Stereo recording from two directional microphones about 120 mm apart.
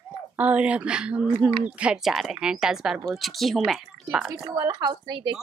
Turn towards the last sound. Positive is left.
turn(degrees=-35)  # may be behind; listen again after turning